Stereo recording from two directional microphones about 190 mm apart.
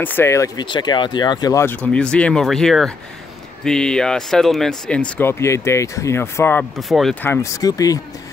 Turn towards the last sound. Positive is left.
turn(degrees=20)  # may be behind; listen again after turning